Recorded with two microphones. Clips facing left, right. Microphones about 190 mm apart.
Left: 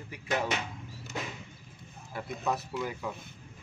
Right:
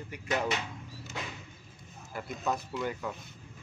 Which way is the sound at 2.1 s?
Centre (ahead or behind).